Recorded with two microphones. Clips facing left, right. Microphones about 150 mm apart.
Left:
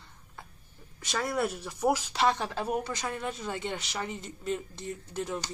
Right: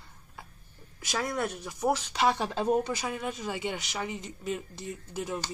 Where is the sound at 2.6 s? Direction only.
25° right (ahead or behind).